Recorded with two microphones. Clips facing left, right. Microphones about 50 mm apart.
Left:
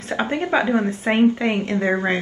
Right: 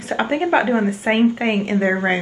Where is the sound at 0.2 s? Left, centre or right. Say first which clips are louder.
Right 3 dB; centre.